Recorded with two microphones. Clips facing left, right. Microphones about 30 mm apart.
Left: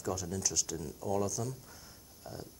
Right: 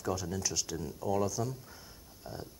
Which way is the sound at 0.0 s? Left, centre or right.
Centre.